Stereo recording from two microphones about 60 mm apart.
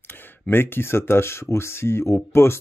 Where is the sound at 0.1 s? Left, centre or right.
Left.